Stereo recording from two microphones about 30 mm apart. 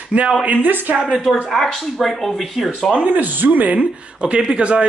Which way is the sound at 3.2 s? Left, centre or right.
Right.